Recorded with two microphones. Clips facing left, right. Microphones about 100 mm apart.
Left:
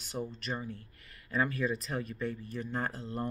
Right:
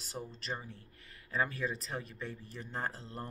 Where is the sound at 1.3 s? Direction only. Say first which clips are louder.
Left 4 dB; 30° right (ahead or behind).